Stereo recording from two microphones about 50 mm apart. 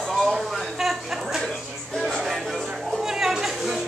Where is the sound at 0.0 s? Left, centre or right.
Centre.